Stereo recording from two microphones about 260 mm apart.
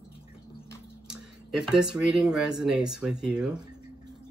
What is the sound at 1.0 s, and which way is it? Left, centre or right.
Speech, centre.